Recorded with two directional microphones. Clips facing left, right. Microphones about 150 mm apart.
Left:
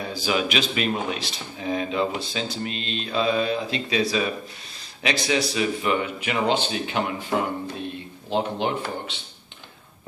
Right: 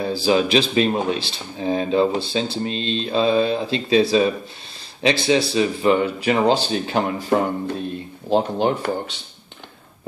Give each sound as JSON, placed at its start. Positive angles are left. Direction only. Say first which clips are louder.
{"t": 0.0, "sound": "speech", "louder": "right 7 dB", "side_deg": -30}